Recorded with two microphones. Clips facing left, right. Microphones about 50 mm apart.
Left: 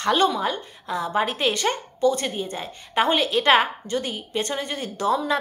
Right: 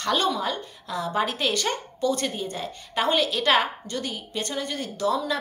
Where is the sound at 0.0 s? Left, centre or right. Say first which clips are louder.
Left 4 dB; centre.